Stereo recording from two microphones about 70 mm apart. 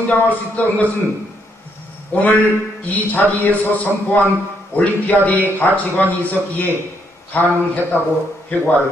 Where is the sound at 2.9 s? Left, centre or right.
Left.